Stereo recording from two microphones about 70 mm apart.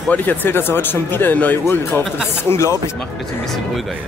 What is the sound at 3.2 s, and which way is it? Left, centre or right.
Speech, centre.